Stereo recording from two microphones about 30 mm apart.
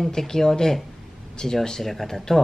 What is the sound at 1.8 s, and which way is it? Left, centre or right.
Speech, centre.